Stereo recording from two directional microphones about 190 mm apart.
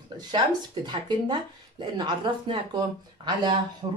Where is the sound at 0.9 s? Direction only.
25° right (ahead or behind).